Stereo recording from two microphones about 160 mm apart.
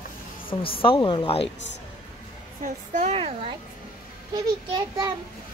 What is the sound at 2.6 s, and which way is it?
Speech, 50° right (ahead or behind).